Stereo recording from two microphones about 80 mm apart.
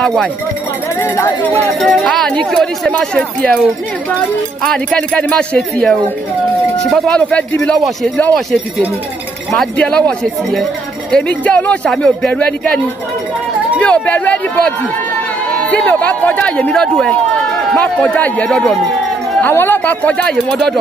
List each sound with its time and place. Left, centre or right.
0.0 s speech: centre
1.0 s speech: left
1.8 s a woman's voice: centre
4.6 s a woman's voice: centre
7.1 s a woman's voice: centre
9.8 s a woman's voice: centre
20.5 s speech: centre